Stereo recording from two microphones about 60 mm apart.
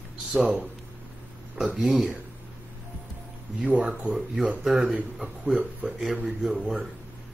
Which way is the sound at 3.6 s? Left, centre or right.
Right.